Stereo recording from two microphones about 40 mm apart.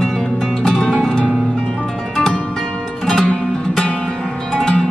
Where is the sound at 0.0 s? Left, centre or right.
Centre.